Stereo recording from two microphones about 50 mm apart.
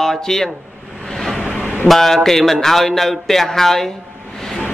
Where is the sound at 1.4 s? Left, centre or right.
Centre.